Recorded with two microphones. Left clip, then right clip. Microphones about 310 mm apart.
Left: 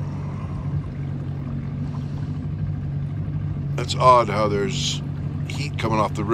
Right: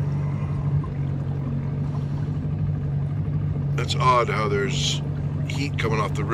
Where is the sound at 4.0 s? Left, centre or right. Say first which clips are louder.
Left 5 dB; centre.